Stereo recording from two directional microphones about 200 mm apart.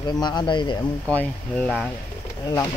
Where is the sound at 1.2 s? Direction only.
5° left (ahead or behind).